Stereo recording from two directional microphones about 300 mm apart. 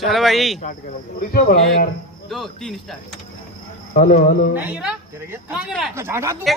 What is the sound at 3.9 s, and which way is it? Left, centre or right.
Speech, left.